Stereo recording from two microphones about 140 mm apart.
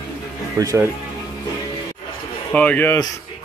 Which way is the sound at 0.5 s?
25° right (ahead or behind).